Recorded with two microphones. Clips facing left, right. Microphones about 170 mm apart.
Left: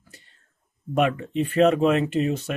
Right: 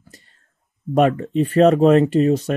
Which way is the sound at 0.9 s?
40° right (ahead or behind).